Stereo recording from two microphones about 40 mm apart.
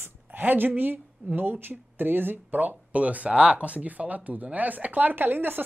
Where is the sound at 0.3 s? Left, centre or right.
Right.